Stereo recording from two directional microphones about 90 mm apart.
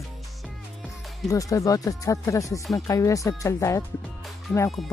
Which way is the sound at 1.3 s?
40° left (ahead or behind).